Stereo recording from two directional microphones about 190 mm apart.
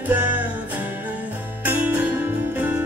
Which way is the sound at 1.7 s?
10° right (ahead or behind).